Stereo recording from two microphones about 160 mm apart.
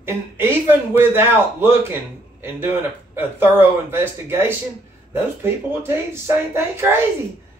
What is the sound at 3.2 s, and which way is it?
A man's voice, 15° right (ahead or behind).